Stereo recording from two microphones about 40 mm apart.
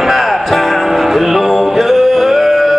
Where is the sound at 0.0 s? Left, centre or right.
Centre.